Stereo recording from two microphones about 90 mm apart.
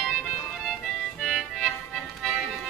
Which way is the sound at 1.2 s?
Centre (ahead or behind).